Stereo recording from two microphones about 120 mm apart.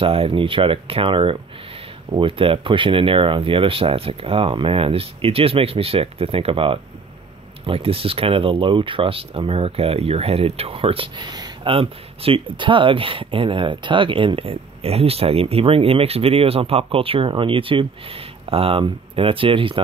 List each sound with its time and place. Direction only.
0.0 s speech: 50° right (ahead or behind)